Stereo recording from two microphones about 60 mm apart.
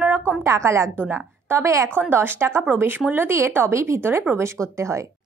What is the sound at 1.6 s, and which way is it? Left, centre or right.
Speech, right.